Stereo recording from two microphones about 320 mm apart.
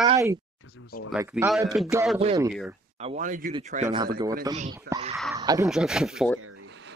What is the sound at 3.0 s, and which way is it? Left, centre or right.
Speech, right.